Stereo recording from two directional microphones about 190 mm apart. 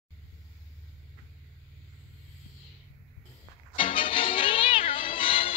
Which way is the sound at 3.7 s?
25° left (ahead or behind).